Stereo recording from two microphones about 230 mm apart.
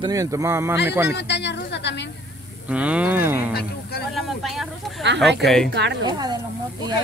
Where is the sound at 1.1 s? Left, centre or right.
Left.